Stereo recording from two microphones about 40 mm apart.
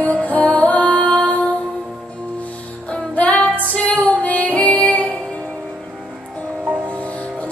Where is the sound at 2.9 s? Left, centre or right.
Left.